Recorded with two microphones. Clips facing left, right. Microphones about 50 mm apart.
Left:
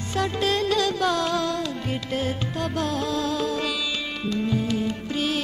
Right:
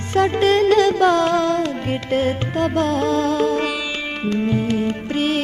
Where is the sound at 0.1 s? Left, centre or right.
Right.